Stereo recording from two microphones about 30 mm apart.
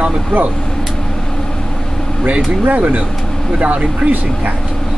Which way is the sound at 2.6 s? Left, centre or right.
Right.